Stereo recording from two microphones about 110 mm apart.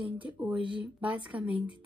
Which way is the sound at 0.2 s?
15° right (ahead or behind).